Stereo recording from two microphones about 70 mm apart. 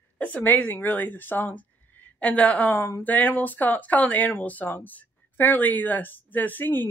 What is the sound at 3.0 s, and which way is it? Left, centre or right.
A woman's voice, left.